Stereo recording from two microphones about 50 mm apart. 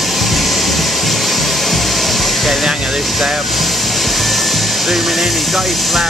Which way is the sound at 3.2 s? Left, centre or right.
Centre.